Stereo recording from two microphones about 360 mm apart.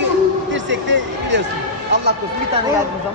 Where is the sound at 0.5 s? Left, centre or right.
Right.